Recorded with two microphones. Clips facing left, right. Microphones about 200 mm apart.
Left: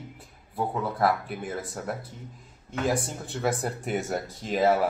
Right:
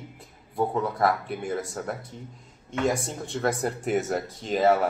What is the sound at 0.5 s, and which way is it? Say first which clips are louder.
Speech: right 3 dB; centre (ahead or behind).